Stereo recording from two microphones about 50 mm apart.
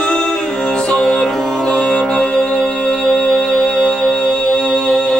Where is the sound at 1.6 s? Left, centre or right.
Centre.